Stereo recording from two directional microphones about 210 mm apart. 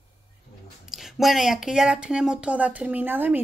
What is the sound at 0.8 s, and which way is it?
Speech, centre (ahead or behind).